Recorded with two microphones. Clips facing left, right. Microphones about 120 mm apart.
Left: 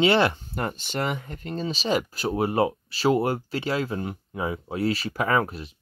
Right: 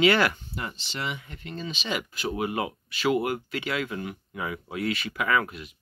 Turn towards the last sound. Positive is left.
turn(degrees=35)  # may be behind; listen again after turning